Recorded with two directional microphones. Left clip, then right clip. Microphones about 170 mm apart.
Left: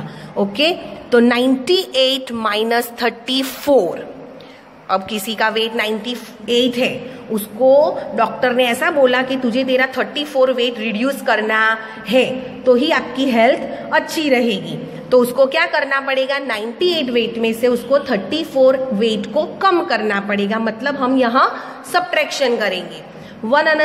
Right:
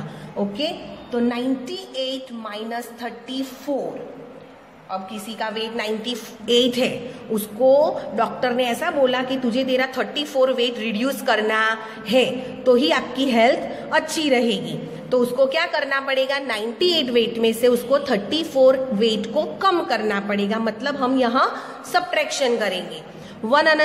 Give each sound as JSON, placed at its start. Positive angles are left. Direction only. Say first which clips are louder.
{"t": 0.6, "sound": "a woman's voice", "louder": "left 9 dB", "side_deg": 50}
{"t": 4.8, "sound": "a woman's voice", "louder": "left 10 dB", "side_deg": 55}
{"t": 6.0, "sound": "a woman's voice", "louder": "left 2 dB", "side_deg": 0}
{"t": 23.5, "sound": "a woman's voice", "louder": "left 2 dB", "side_deg": -5}